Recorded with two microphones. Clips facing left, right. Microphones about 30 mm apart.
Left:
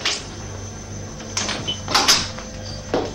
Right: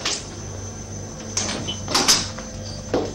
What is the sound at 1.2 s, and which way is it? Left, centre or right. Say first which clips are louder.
Music: left 2 dB; left.